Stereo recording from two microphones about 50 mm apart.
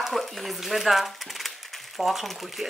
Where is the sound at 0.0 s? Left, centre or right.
Centre.